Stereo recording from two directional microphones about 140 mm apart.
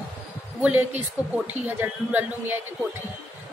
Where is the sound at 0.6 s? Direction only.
10° right (ahead or behind).